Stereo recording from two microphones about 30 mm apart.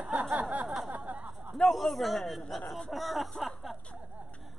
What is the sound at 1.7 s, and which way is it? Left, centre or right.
Speech, centre.